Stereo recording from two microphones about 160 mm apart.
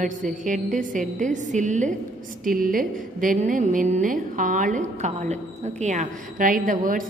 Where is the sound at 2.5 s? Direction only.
60° right (ahead or behind).